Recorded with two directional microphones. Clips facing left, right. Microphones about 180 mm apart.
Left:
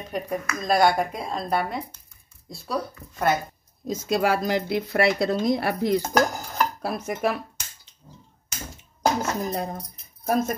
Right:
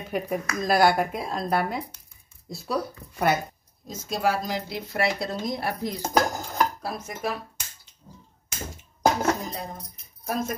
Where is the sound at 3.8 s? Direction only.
70° left (ahead or behind).